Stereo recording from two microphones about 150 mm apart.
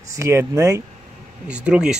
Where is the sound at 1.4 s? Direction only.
5° right (ahead or behind).